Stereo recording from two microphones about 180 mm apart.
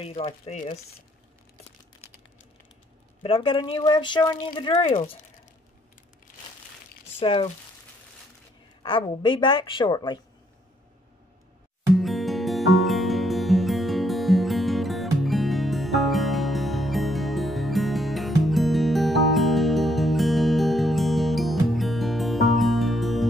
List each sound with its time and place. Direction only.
0.0 s speech: 35° left (ahead or behind)
3.2 s speech: 30° left (ahead or behind)
7.2 s speech: 30° left (ahead or behind)
8.8 s speech: 30° left (ahead or behind)
12.0 s music: centre (ahead or behind)